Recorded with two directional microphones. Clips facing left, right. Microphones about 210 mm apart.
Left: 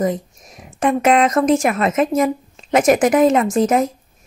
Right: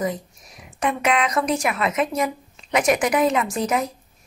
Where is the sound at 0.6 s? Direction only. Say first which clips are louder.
Left 7 dB; 45° left (ahead or behind).